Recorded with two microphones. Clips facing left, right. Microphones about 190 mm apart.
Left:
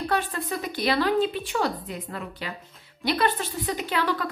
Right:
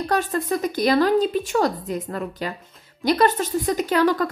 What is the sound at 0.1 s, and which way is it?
A woman's voice, 45° right (ahead or behind).